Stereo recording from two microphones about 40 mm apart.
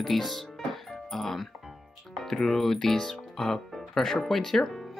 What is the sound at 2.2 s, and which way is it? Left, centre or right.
Speech, centre.